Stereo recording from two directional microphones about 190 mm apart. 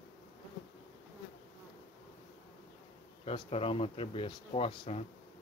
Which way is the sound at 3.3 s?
30° left (ahead or behind).